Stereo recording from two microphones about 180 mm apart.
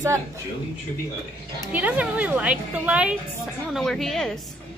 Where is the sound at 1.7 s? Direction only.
10° right (ahead or behind).